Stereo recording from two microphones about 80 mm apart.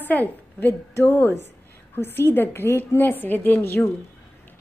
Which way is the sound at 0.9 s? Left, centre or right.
Left.